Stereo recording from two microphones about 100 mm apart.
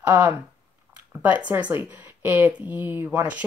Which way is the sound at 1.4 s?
20° right (ahead or behind).